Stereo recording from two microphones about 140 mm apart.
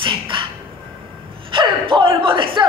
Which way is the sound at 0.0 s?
35° right (ahead or behind).